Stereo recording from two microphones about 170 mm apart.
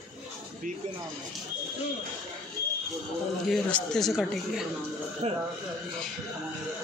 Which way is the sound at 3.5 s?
5° left (ahead or behind).